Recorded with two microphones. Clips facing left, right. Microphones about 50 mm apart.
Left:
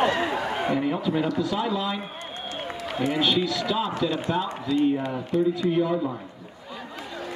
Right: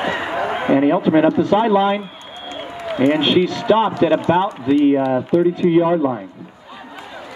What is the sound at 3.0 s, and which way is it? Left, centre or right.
Speech, right.